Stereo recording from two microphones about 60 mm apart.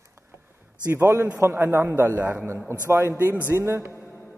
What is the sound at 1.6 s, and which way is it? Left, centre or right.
A man's voice, right.